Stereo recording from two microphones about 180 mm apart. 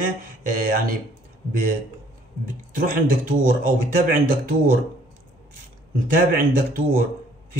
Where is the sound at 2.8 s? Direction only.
50° right (ahead or behind).